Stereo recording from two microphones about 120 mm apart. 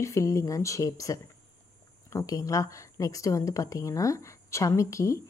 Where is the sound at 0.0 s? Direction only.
25° left (ahead or behind).